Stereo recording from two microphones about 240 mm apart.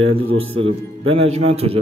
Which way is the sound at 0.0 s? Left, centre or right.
Right.